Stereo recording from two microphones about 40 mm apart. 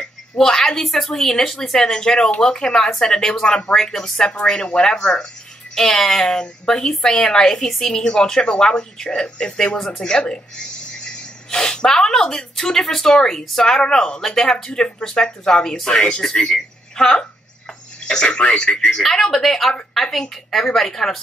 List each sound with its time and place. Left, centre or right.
0.4 s a woman's voice: centre
3.7 s a woman's voice: centre
4.0 s a woman's voice: centre